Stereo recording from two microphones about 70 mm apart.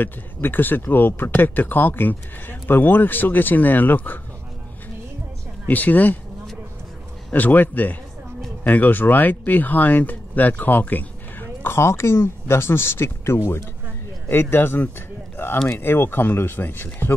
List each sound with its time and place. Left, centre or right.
0.0 s speech: left
5.7 s speech: left
7.3 s speech: left